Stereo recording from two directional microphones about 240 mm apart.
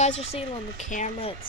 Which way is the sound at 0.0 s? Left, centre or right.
Left.